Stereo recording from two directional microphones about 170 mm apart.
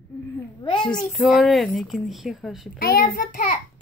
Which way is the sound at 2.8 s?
60° left (ahead or behind).